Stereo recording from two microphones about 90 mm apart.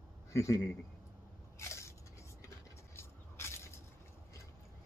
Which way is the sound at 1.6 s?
35° left (ahead or behind).